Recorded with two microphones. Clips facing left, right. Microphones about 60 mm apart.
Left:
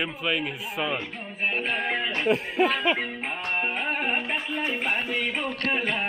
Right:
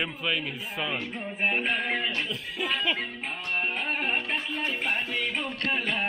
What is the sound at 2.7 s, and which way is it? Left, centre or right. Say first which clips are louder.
Music: left 4 dB; left.